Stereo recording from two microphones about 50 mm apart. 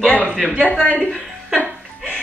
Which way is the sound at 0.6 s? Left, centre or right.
Left.